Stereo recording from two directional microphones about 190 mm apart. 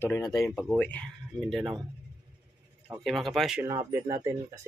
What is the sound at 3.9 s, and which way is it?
Speech, 15° right (ahead or behind).